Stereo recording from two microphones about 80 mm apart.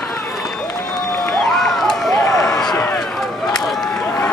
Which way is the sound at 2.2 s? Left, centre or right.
Left.